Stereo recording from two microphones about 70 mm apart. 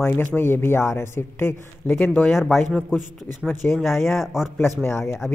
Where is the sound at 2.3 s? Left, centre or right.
Centre.